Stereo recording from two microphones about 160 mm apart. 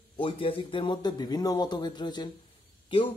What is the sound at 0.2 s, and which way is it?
Speech, 35° left (ahead or behind).